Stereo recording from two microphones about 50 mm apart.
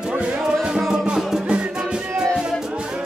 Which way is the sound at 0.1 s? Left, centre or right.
Right.